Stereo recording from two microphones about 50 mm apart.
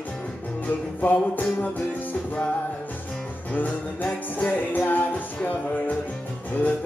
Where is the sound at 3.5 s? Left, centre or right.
Left.